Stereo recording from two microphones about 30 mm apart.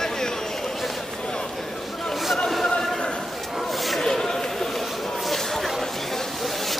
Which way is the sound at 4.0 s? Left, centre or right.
Left.